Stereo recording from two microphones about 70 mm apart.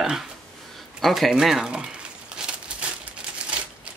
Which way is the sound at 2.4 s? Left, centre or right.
Centre.